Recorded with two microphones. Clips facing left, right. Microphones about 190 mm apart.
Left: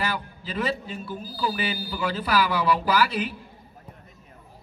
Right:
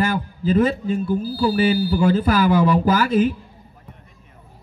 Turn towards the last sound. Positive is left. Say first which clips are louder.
# right 7 dB
turn(degrees=-45)  # may be behind; listen again after turning